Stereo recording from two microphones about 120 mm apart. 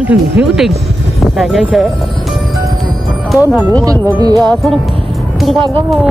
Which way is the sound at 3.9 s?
35° right (ahead or behind).